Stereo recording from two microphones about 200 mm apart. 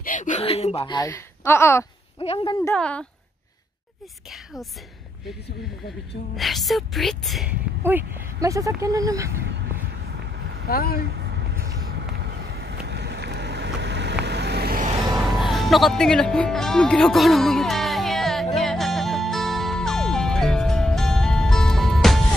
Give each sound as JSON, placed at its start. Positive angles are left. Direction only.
{"t": 0.0, "sound": "speech", "side_deg": 40}
{"t": 2.2, "sound": "speech", "side_deg": 25}
{"t": 2.6, "sound": "speech", "side_deg": 5}
{"t": 6.3, "sound": "speech", "side_deg": 0}
{"t": 9.5, "sound": "vehicle", "side_deg": -55}
{"t": 10.7, "sound": "speech", "side_deg": 50}
{"t": 11.1, "sound": "vehicle", "side_deg": -55}
{"t": 15.5, "sound": "music", "side_deg": 0}